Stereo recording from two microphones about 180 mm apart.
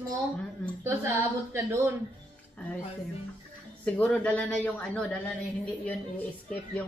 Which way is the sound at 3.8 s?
5° left (ahead or behind).